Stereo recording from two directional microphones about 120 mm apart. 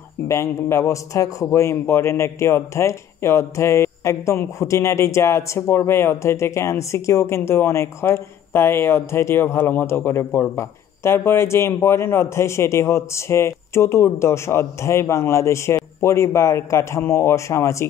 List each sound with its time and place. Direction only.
0.3 s a man's voice: 20° left (ahead or behind)